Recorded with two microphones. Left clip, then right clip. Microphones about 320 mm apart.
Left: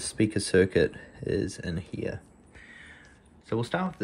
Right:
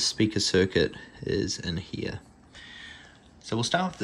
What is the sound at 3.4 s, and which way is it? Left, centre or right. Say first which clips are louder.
Speech: right 3 dB; centre.